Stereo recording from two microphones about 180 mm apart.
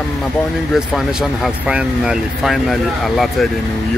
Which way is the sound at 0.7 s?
Centre (ahead or behind).